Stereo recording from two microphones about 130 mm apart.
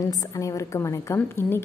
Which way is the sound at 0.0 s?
30° left (ahead or behind).